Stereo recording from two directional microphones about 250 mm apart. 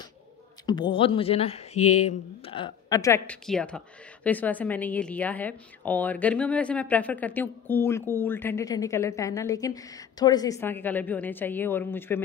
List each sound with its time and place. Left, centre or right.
0.7 s speech: centre
1.8 s speech: left
2.0 s a woman's voice: left